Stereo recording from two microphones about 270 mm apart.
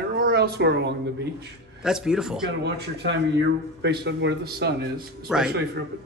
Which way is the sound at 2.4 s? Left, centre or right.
Right.